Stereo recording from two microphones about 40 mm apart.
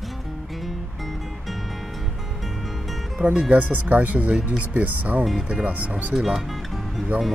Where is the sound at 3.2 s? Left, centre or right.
Right.